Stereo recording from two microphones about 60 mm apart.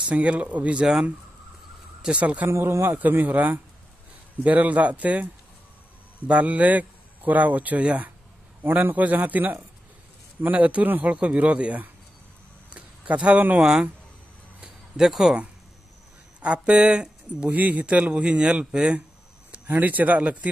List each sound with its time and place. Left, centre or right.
0.1 s speech: right
2.0 s speech: centre
2.4 s speech: right
12.6 s a sound: centre
13.6 s speech: centre
14.6 s a sound: centre
16.3 s speech: right
17.5 s speech: right
19.7 s speech: right